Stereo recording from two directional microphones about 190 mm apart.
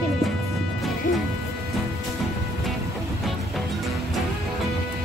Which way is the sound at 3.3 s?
Centre (ahead or behind).